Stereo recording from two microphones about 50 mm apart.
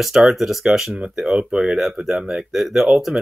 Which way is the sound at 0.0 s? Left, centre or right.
Centre.